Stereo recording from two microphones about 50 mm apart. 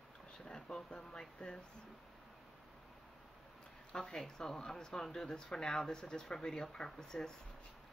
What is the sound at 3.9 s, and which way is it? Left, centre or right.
Speech, centre.